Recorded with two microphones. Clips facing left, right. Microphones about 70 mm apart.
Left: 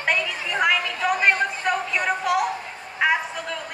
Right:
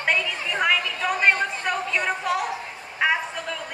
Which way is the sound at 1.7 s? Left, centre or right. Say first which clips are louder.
Left 2 dB; centre.